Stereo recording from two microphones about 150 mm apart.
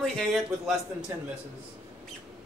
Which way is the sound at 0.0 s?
5° left (ahead or behind).